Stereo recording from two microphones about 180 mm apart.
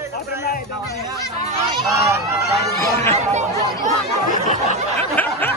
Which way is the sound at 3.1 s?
40° right (ahead or behind).